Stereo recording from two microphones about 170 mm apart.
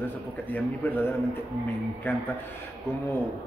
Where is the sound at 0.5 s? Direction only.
10° left (ahead or behind).